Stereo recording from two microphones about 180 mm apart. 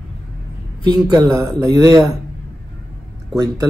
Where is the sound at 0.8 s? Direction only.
20° right (ahead or behind).